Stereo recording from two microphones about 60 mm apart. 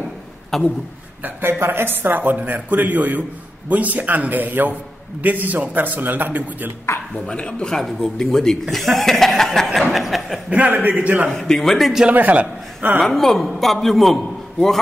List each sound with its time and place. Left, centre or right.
0.5 s speech: centre
1.2 s speech: right
7.2 s a man's voice: centre
10.5 s speech: right
11.2 s a man's voice: centre
12.1 s a man's voice: right
13.0 s a man's voice: centre